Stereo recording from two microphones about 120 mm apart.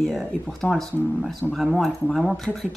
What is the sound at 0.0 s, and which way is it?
A woman's voice, centre (ahead or behind).